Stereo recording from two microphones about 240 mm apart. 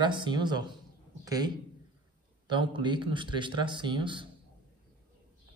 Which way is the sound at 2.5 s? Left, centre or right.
Centre.